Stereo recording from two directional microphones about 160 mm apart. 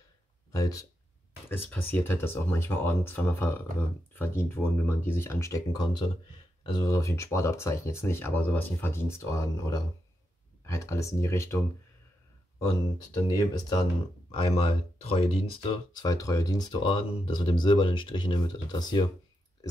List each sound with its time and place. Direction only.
0.5 s speech: 20° left (ahead or behind)
12.6 s speech: 20° left (ahead or behind)
14.3 s speech: 35° left (ahead or behind)